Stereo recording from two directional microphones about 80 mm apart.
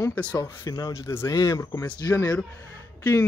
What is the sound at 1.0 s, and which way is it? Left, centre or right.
Speech, left.